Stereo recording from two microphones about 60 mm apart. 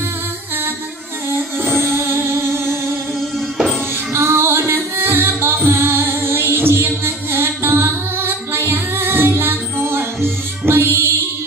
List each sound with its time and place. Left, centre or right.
1.6 s music: right
3.2 s music: centre
4.1 s music: right